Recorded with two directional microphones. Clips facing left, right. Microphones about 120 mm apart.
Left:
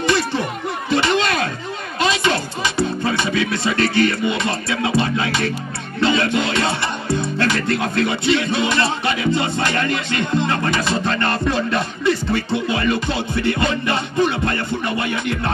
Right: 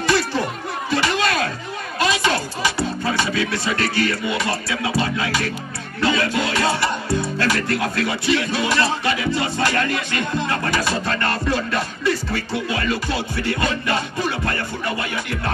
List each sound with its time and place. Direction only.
0.0 s music: 20° left (ahead or behind)
0.8 s a sound: 20° left (ahead or behind)
3.2 s music: 20° left (ahead or behind)